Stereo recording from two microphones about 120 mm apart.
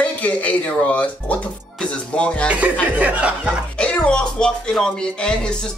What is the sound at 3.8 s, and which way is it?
Speech, 10° left (ahead or behind).